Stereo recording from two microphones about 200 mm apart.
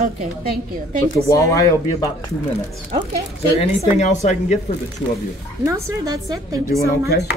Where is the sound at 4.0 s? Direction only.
35° left (ahead or behind).